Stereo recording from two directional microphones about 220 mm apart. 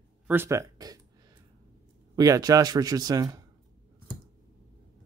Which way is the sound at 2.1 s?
15° right (ahead or behind).